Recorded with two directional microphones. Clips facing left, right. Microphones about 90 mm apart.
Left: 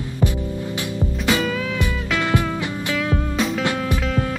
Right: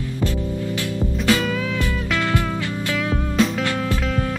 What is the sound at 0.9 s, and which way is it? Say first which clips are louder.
Music: right 1 dB; 20° left (ahead or behind).